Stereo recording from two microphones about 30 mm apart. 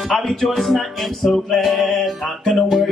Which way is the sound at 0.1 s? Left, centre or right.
Centre.